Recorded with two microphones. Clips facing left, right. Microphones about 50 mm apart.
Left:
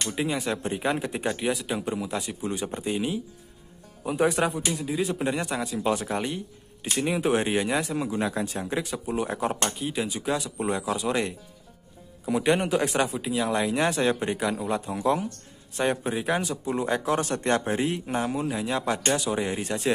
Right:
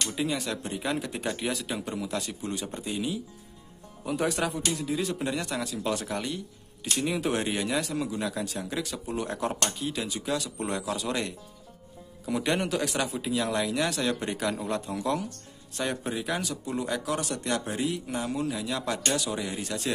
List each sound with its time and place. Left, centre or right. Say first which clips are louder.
0.0 s speech: left 2 dB; left
2.6 s speech: left 5 dB; left
4.0 s speech: left 4 dB; centre
13.2 s speech: left 2 dB; centre
13.6 s speech: left 4 dB; left
14.5 s speech: left 3 dB; centre
14.9 s speech: left 4 dB; left